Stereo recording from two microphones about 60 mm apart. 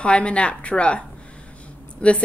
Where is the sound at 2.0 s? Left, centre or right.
Centre.